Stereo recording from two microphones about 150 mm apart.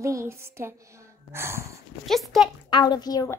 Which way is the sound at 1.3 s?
15° right (ahead or behind).